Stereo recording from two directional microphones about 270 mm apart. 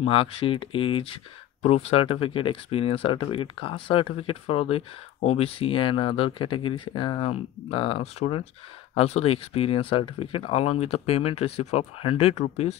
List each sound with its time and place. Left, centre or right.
0.0 s speech: left